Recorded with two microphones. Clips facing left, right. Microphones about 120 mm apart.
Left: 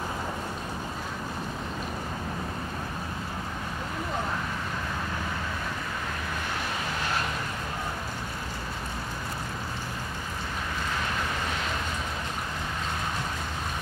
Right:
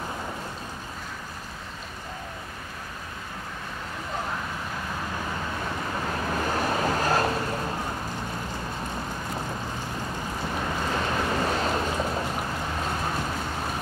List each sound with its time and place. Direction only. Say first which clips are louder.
6.4 s vehicle: right 10 dB; 40° right (ahead or behind)